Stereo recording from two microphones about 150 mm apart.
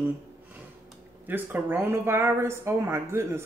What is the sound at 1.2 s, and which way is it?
Speech, 15° right (ahead or behind).